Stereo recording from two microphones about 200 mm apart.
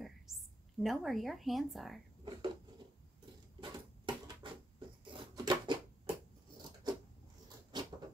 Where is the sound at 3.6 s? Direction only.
25° right (ahead or behind).